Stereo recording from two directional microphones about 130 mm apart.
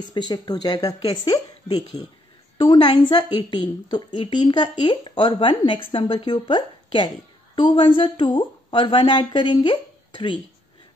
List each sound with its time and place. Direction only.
0.0 s speech: 35° left (ahead or behind)